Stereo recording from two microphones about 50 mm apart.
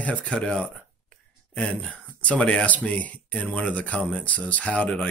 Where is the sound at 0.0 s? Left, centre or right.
Left.